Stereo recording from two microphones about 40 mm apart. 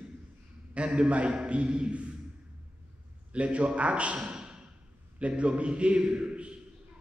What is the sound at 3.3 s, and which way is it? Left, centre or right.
Speech, right.